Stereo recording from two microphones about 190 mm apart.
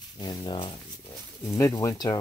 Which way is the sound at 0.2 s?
20° left (ahead or behind).